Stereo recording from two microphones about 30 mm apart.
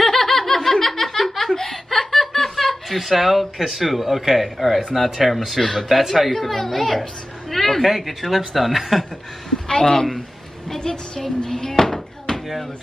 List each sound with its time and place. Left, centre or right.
0.0 s laughter: centre
2.0 s chuckle: centre
3.0 s speech: centre
5.6 s speech: centre
5.9 s speech: centre
6.3 s speech: centre
7.5 s a sound: centre
7.8 s speech: centre
9.7 s a woman's voice: left
11.1 s speech: centre
11.5 s a sound: centre